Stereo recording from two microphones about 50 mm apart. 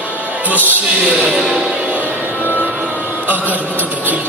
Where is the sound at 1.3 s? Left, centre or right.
Centre.